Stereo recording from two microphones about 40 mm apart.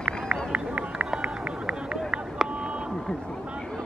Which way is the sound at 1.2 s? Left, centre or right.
Right.